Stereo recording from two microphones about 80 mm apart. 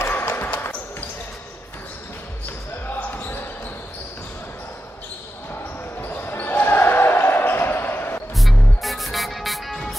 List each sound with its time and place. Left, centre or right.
0.1 s basketball bounce: left
3.0 s basketball bounce: left
5.9 s basketball bounce: left
8.4 s music: centre